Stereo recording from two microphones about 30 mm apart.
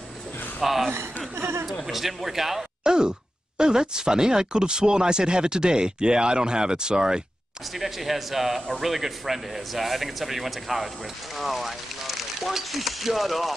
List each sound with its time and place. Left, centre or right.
0.6 s a man's voice: centre
2.8 s a sound: right
3.5 s speech: right
7.8 s a man's voice: centre